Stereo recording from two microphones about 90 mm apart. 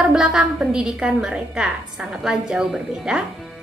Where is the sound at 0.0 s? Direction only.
5° right (ahead or behind).